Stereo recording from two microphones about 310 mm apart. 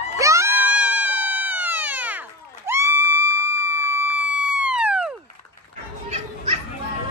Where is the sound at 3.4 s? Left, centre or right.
Left.